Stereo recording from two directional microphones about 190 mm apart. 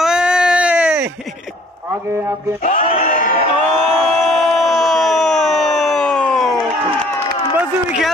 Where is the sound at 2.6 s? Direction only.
45° left (ahead or behind).